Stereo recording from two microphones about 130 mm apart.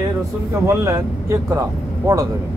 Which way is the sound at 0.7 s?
20° right (ahead or behind).